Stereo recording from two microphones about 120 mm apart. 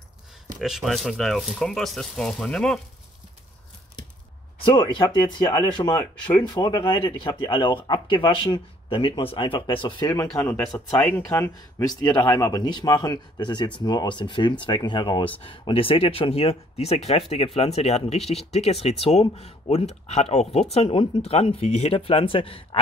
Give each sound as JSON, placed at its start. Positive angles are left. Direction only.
{"t": 0.6, "sound": "speech", "side_deg": -5}
{"t": 4.6, "sound": "a sound", "side_deg": 45}
{"t": 4.9, "sound": "speech", "side_deg": 35}
{"t": 11.0, "sound": "speech", "side_deg": 15}
{"t": 20.7, "sound": "speech", "side_deg": 55}